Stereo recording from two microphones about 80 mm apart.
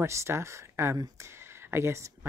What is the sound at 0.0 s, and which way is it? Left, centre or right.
A woman's voice, right.